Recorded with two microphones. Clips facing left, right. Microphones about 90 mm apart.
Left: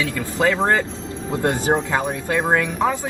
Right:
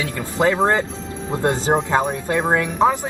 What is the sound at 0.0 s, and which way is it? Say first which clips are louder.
Speech: right 1 dB; 25° right (ahead or behind).